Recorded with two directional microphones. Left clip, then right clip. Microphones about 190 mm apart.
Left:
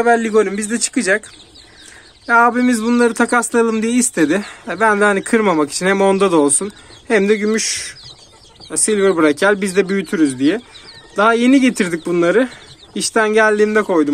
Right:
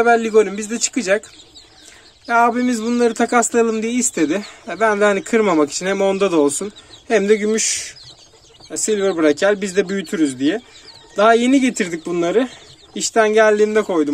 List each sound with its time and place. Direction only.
0.0 s speech: 20° right (ahead or behind)
2.2 s speech: 10° right (ahead or behind)
8.7 s speech: 5° right (ahead or behind)